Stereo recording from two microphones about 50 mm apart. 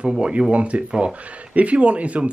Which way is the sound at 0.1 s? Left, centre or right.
Centre.